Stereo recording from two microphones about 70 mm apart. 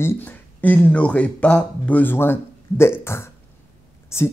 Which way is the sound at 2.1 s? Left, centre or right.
Left.